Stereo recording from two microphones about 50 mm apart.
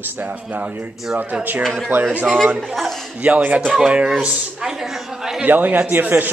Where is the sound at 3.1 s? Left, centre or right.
Right; by 5.4 s centre.